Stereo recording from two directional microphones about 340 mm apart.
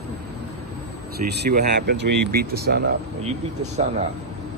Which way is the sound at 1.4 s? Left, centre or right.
Right.